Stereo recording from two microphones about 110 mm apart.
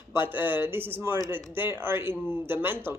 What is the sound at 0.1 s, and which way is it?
Speech, 20° right (ahead or behind).